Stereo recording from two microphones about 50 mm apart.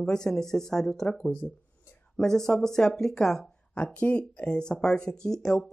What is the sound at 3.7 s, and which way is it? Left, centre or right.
Speech, left.